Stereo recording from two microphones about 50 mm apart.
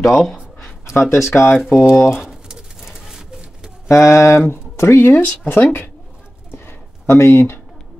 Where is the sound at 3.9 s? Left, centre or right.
Left.